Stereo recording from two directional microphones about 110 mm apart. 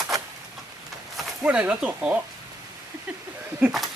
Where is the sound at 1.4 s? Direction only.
10° right (ahead or behind).